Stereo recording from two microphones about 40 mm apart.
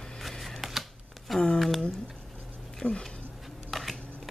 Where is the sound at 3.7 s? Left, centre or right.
Centre.